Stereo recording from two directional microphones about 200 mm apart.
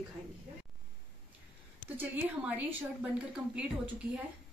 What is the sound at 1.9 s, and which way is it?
A woman's voice, 10° right (ahead or behind).